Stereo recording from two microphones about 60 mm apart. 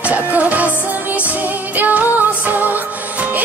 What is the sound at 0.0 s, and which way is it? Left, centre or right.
Music, right.